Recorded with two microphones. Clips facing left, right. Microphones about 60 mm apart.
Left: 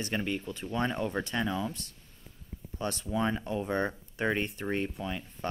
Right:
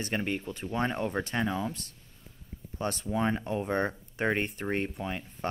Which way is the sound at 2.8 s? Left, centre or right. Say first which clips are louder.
Right 1 dB; right.